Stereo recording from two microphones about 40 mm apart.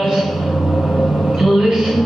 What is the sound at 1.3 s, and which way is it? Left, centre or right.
Music, centre.